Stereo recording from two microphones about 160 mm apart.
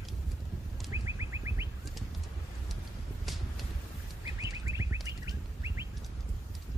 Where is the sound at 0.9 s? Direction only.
20° right (ahead or behind).